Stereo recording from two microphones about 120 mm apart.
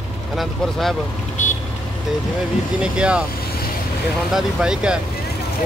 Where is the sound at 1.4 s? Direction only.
90° left.